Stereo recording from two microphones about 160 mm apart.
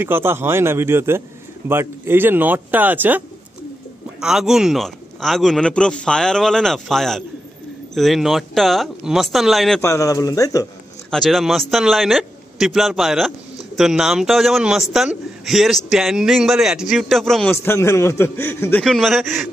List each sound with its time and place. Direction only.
0.0 s a man's voice: 15° right (ahead or behind)
9.8 s speech: 20° left (ahead or behind)
11.1 s a man's voice: centre (ahead or behind)
17.5 s a man's voice: 15° left (ahead or behind)